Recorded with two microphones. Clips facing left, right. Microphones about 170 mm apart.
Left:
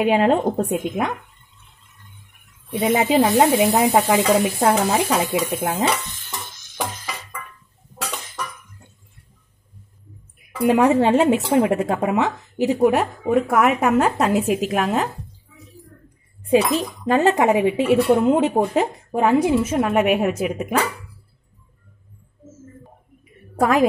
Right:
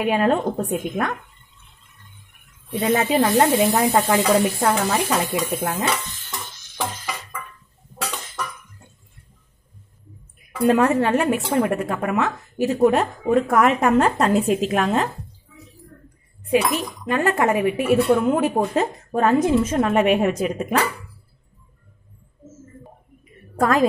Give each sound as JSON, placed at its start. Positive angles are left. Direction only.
{"t": 0.0, "sound": "a woman's voice", "side_deg": 20}
{"t": 2.7, "sound": "a woman's voice", "side_deg": 15}
{"t": 4.6, "sound": "a woman's voice", "side_deg": 20}
{"t": 10.6, "sound": "a woman's voice", "side_deg": 15}
{"t": 16.4, "sound": "a woman's voice", "side_deg": 30}
{"t": 23.5, "sound": "a woman's voice", "side_deg": 10}